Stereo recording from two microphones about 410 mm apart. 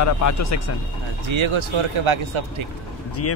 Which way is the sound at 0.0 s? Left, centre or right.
Left.